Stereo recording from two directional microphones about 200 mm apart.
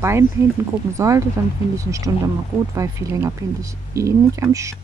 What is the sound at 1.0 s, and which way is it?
Speech, 15° right (ahead or behind).